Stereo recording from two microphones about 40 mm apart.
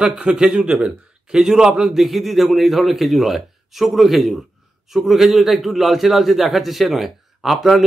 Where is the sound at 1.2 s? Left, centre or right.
Centre.